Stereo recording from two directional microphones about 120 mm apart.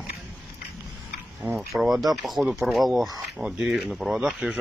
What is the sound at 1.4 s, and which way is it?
Speech, centre (ahead or behind).